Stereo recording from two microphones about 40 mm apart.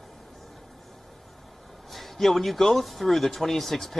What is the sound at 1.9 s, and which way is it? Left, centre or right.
Speech, centre.